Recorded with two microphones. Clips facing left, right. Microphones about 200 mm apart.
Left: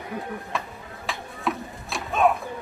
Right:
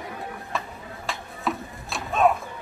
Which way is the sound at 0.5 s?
Centre (ahead or behind).